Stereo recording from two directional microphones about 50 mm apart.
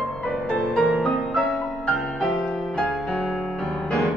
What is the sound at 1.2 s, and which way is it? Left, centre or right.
Music, centre.